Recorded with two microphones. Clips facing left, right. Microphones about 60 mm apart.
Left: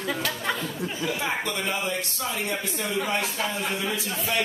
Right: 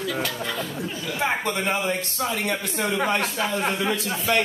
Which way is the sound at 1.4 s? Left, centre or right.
Right.